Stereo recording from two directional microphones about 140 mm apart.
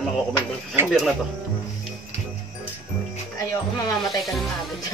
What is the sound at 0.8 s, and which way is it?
Speech, 5° right (ahead or behind).